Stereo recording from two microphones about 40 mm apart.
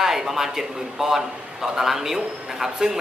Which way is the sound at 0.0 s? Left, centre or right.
Centre.